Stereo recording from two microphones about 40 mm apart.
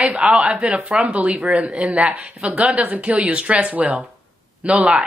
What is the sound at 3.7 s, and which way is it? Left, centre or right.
Speech, right.